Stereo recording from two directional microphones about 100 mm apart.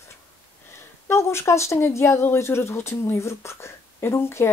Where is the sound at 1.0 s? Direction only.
25° left (ahead or behind).